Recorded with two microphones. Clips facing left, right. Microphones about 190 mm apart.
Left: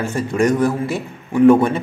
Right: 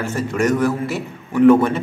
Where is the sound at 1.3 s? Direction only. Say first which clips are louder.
Left 1 dB; 10° left (ahead or behind).